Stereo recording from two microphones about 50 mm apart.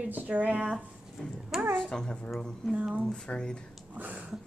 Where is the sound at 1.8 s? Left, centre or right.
Centre.